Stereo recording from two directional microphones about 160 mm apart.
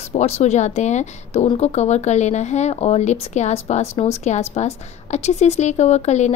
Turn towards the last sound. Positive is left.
turn(degrees=45)  # may be behind; listen again after turning